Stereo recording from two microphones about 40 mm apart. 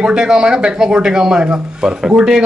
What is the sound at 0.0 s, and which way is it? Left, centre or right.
Speech, right.